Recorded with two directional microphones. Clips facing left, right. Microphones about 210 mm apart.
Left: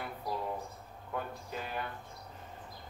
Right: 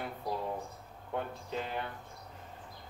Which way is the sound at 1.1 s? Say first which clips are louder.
Right 2 dB; 25° right (ahead or behind).